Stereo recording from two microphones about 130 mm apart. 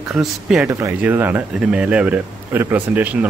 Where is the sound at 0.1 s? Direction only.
5° right (ahead or behind).